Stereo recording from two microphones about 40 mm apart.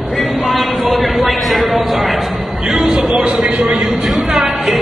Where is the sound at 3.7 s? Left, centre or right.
Centre.